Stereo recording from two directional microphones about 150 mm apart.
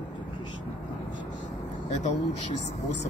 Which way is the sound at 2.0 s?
50° left (ahead or behind).